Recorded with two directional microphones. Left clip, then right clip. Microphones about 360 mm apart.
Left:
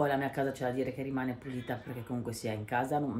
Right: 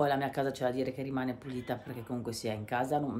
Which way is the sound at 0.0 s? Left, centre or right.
Centre.